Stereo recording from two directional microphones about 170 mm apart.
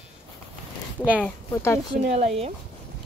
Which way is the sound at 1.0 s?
10° right (ahead or behind).